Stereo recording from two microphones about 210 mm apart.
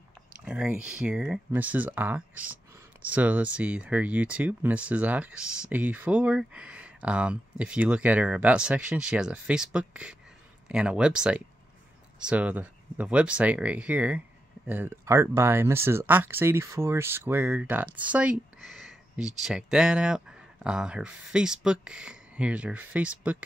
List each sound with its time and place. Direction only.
0.5 s speech: 5° right (ahead or behind)